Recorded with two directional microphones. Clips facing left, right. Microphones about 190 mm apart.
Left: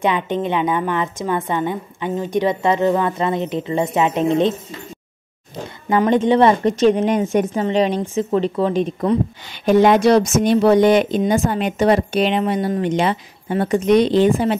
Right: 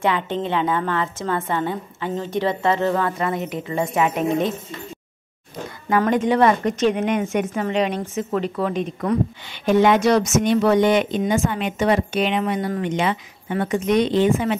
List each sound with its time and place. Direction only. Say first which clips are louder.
0.0 s a woman's voice: left 3 dB; 15° left (ahead or behind)
5.9 s a woman's voice: left 3 dB; 25° left (ahead or behind)
9.7 s speech: left 3 dB; 35° left (ahead or behind)